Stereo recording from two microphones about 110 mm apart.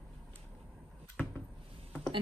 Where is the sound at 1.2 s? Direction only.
10° left (ahead or behind).